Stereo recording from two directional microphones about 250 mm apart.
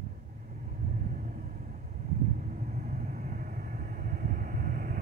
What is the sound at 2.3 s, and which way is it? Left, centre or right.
Vehicle, right.